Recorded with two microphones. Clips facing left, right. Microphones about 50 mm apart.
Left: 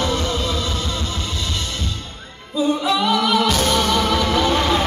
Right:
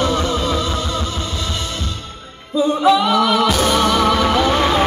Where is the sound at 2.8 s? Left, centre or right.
Centre.